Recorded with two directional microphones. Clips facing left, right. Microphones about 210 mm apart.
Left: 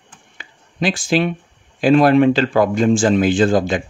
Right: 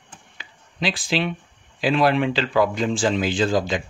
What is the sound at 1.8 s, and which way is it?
Speech, 45° left (ahead or behind).